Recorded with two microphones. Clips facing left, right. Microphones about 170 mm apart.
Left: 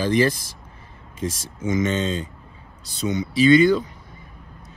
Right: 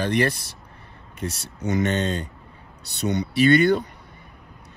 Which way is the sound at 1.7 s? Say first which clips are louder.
Left 1 dB; 65° right (ahead or behind).